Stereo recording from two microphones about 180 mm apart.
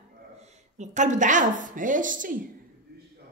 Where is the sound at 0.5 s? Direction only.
40° right (ahead or behind).